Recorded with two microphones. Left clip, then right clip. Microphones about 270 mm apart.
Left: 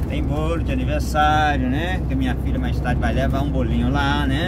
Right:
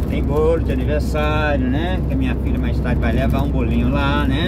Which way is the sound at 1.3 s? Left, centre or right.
Centre.